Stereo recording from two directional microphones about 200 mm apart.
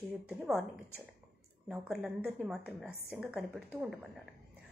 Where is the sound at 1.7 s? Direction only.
5° right (ahead or behind).